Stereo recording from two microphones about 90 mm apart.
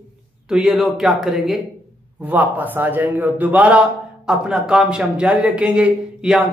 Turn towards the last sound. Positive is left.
turn(degrees=-10)  # may be behind; listen again after turning